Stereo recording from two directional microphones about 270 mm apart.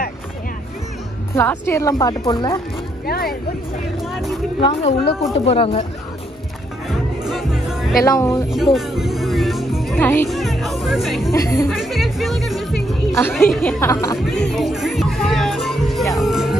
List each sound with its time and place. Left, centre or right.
1.3 s speech: centre
3.1 s speech: left
4.1 s speech: centre
4.6 s speech: centre
6.9 s music: centre
8.0 s speech: centre
8.5 s music: centre
11.3 s speech: centre
11.7 s speech: centre
14.1 s music: centre